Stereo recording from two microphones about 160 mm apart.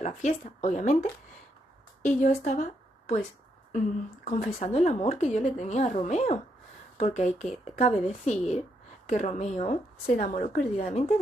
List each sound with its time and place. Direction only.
0.0 s a woman's voice: 50° left (ahead or behind)
2.0 s a woman's voice: 50° left (ahead or behind)